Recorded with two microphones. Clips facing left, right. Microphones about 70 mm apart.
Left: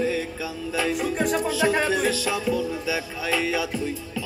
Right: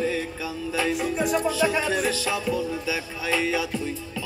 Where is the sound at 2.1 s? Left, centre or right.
Right.